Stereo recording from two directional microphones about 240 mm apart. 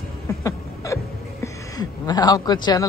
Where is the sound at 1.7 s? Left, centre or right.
Centre.